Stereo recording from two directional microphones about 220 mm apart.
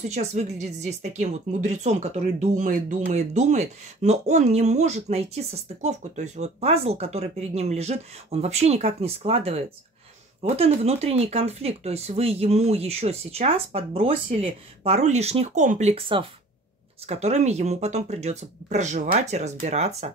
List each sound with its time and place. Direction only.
0.0 s speech: 30° right (ahead or behind)